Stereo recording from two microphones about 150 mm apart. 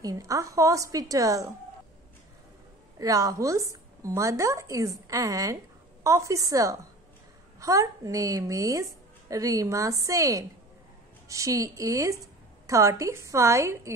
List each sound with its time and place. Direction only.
0.0 s speech: 20° right (ahead or behind)
3.0 s speech: 25° right (ahead or behind)